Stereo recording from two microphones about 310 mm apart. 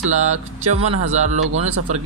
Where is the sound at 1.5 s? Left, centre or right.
Right.